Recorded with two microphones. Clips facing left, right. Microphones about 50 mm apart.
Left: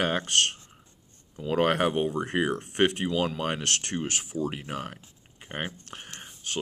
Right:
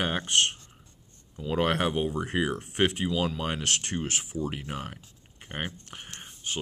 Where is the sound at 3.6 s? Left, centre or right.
Centre.